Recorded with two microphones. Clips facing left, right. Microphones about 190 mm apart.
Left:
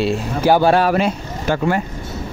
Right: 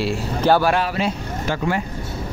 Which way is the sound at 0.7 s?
50° left (ahead or behind).